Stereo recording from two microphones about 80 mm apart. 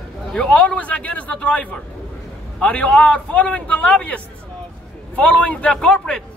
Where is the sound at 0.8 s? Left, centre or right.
Centre.